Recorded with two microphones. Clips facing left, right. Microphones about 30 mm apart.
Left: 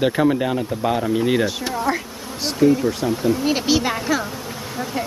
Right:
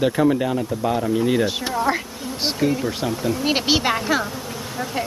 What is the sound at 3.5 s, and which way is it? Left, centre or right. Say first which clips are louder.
Speech: even; right.